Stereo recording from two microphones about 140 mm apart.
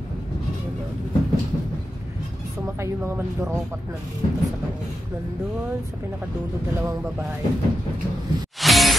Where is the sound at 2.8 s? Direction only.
15° right (ahead or behind).